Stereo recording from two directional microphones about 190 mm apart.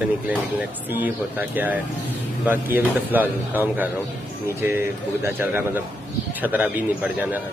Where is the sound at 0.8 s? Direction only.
10° right (ahead or behind).